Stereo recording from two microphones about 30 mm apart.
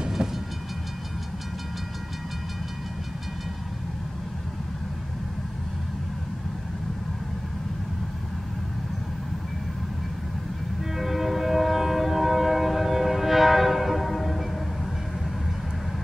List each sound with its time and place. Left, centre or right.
0.2 s train: right
10.8 s train: centre